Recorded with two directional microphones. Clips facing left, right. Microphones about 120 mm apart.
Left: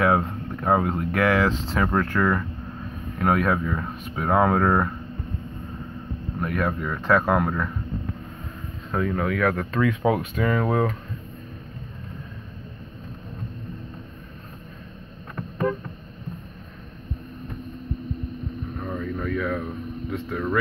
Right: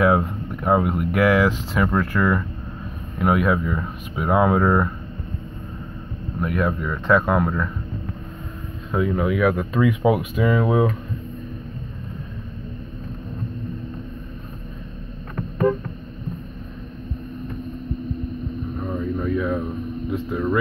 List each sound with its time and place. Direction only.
0.0 s speech: 15° right (ahead or behind)
1.7 s speech: 5° right (ahead or behind)
6.4 s speech: 5° right (ahead or behind)
8.9 s speech: 10° right (ahead or behind)
18.9 s a sound: 20° right (ahead or behind)